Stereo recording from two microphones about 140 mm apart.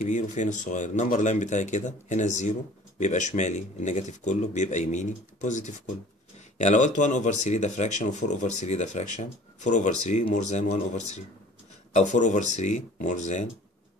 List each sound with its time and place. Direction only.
0.0 s speech: 60° left (ahead or behind)